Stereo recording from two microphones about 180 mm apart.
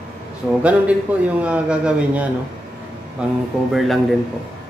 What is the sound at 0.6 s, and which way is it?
A man's voice, 5° right (ahead or behind).